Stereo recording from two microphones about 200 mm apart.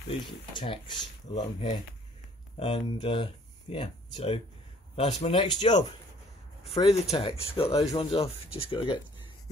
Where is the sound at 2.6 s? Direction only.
30° left (ahead or behind).